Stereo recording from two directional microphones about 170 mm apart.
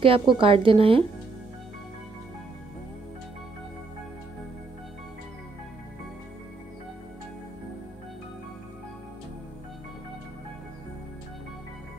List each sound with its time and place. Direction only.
0.0 s a woman's voice: 30° right (ahead or behind)